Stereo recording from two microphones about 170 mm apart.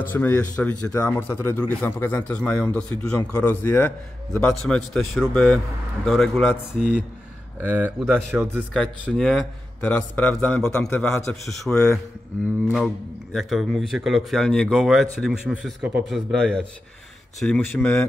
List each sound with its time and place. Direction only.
0.1 s a man's voice: 10° left (ahead or behind); by 8.1 s 10° right (ahead or behind)
9.0 s a man's voice: centre (ahead or behind)